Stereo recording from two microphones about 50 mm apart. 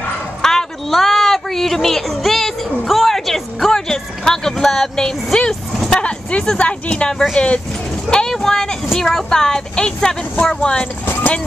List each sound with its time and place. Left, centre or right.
0.4 s a sound: centre; by 6.4 s left
6.6 s speech: left
8.3 s vehicle: centre
8.9 s a woman's voice: centre